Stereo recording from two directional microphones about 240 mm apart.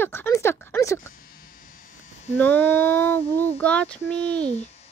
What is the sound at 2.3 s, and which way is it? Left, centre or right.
A woman's voice, centre.